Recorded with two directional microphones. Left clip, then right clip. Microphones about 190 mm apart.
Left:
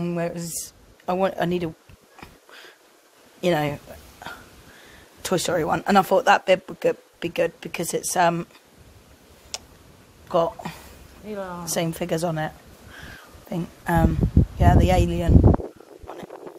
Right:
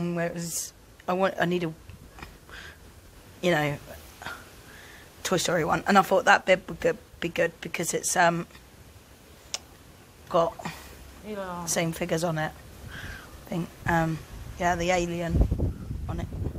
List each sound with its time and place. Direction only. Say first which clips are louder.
0.0 s speech: left 3 dB; 25° left (ahead or behind)
2.1 s a sound: even; 20° left (ahead or behind)
3.3 s speech: left 3 dB; 25° left (ahead or behind)
9.5 s tick: left 1 dB; 25° left (ahead or behind)
10.2 s speech: left 2 dB; 25° left (ahead or behind)
11.2 s speech: left 2 dB; 50° left (ahead or behind)
11.6 s speech: left 2 dB; 25° left (ahead or behind)